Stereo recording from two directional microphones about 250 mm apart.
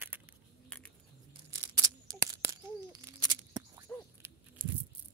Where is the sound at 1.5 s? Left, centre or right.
Centre.